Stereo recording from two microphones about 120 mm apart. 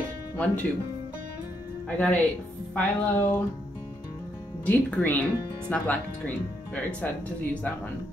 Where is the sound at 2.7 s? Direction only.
15° left (ahead or behind).